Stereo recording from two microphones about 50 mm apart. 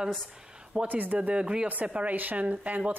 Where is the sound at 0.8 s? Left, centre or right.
Right.